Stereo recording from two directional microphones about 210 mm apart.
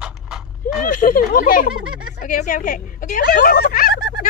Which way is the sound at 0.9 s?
40° left (ahead or behind).